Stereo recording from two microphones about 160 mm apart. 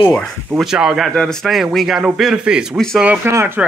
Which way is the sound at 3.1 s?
15° right (ahead or behind).